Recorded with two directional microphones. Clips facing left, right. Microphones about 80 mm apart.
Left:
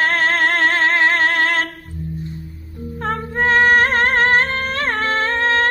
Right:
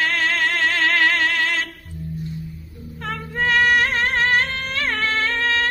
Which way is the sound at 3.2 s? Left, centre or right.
Left.